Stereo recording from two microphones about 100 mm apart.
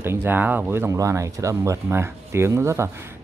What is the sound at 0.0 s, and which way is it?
Speech, 20° right (ahead or behind).